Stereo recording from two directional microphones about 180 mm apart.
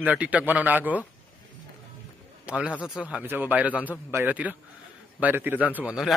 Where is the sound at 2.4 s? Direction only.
5° right (ahead or behind).